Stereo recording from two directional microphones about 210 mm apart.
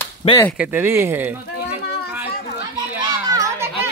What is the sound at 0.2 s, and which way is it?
Speech, 25° left (ahead or behind).